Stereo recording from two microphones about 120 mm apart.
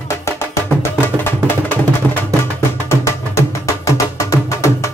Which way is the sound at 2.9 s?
25° left (ahead or behind).